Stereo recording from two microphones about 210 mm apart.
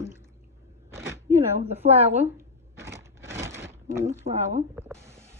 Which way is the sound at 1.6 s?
30° right (ahead or behind).